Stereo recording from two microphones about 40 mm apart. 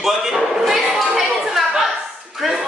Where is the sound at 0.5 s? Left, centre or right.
Centre.